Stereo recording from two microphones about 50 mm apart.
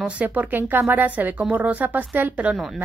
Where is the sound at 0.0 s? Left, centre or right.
Right.